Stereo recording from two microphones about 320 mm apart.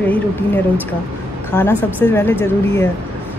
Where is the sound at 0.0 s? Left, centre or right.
Centre.